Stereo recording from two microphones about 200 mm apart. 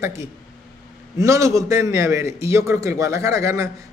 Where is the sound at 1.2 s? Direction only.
15° right (ahead or behind).